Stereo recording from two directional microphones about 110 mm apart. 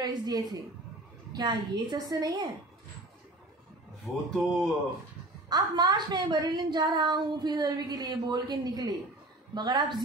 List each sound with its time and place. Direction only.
0.0 s a woman's voice: 35° right (ahead or behind)
4.1 s speech: 20° left (ahead or behind)
5.5 s a woman's voice: 40° right (ahead or behind)